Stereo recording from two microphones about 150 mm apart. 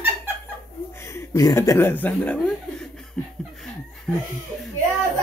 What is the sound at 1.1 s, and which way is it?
Speech, 20° left (ahead or behind).